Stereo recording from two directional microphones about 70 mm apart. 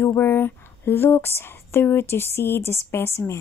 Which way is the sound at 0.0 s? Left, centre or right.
Left.